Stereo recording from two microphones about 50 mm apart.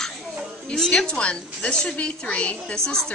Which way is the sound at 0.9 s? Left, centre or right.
Centre.